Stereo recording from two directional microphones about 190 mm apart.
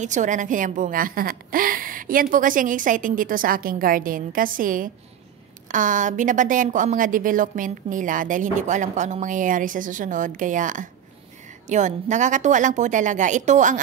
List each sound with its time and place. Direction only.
0.0 s a woman's voice: 40° right (ahead or behind)